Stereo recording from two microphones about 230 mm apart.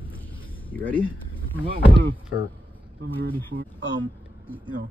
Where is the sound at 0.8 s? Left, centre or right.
Left.